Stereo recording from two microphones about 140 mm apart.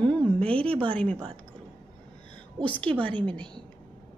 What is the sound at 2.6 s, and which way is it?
Speech, 10° left (ahead or behind).